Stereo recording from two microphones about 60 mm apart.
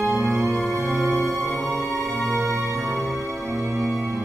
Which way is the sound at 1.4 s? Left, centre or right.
Centre.